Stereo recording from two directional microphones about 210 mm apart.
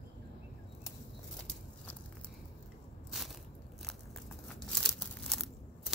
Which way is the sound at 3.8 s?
Centre (ahead or behind).